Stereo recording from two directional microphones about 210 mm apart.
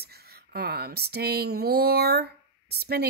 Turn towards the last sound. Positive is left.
turn(degrees=-50)  # may be behind; listen again after turning